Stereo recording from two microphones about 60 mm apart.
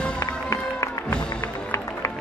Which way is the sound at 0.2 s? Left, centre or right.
Left.